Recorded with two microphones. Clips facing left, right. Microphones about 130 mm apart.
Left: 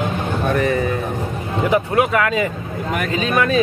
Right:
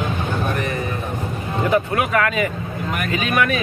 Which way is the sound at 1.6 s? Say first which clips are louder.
Left 2 dB; 20° left (ahead or behind).